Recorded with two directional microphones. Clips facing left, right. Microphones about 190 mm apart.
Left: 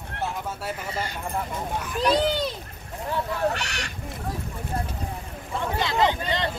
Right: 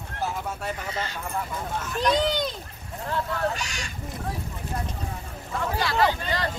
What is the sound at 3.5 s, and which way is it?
Speech, 65° left (ahead or behind).